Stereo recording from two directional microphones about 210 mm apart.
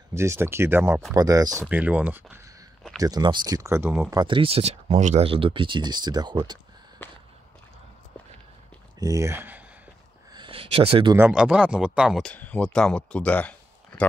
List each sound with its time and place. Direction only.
0.1 s speech: 15° right (ahead or behind)
1.7 s a sound: 5° right (ahead or behind)
3.0 s speech: 20° right (ahead or behind)
4.2 s speech: 25° right (ahead or behind)
9.0 s speech: 15° right (ahead or behind)
10.3 s a sound: 25° right (ahead or behind)
11.1 s speech: 5° right (ahead or behind)